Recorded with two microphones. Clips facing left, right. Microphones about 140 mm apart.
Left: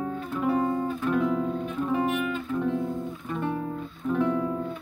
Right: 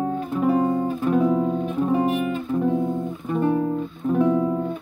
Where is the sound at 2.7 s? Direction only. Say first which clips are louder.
Right 6 dB; 20° right (ahead or behind).